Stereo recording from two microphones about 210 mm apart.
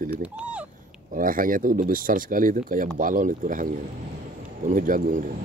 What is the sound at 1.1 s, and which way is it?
Speech, 40° right (ahead or behind).